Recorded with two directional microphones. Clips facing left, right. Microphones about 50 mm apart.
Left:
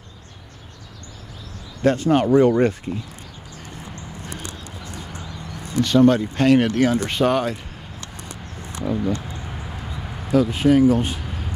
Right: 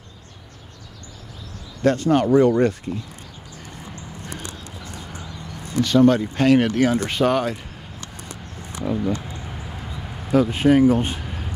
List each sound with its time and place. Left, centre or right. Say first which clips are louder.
1.8 s speech: even; centre
5.8 s speech: even; centre
8.9 s speech: even; centre
10.3 s speech: even; right